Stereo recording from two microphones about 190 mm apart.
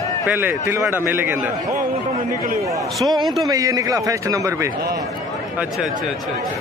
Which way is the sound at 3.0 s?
20° right (ahead or behind).